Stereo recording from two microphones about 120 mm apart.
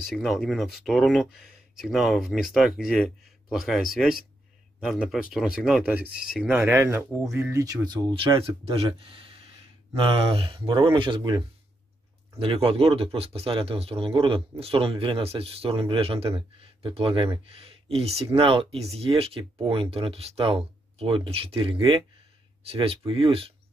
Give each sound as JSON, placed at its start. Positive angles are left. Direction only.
{"t": 0.0, "sound": "speech", "side_deg": 0}
{"t": 8.4, "sound": "speech", "side_deg": -55}